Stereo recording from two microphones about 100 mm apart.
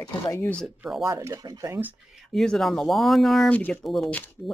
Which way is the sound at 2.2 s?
5° left (ahead or behind).